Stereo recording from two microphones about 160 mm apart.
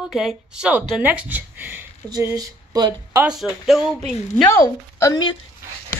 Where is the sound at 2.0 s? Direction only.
20° right (ahead or behind).